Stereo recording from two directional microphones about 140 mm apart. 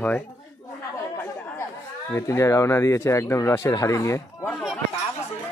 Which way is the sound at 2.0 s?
20° left (ahead or behind).